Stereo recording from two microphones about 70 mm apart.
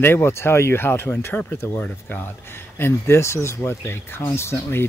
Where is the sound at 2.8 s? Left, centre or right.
Left.